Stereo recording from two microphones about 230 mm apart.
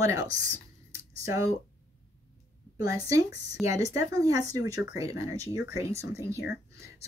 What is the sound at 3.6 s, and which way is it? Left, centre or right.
Speech, centre.